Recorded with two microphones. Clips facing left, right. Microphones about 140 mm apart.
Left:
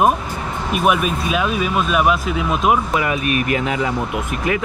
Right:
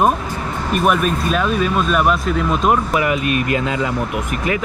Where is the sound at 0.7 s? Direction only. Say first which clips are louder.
Right 1 dB; 5° left (ahead or behind).